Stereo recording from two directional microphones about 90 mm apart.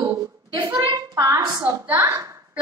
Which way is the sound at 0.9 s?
45° right (ahead or behind).